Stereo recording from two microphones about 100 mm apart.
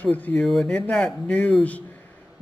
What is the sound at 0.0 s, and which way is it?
Speech, 15° left (ahead or behind).